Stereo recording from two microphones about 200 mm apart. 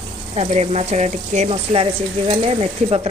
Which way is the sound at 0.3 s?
30° right (ahead or behind).